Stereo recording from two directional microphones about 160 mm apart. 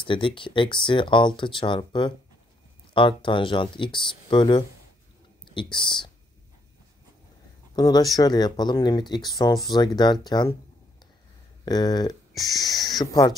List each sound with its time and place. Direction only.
0.0 s speech: 30° left (ahead or behind)
7.7 s speech: 25° left (ahead or behind)
11.6 s speech: 25° left (ahead or behind)